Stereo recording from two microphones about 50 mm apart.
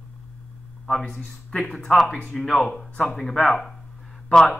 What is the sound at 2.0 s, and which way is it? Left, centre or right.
Speech, left.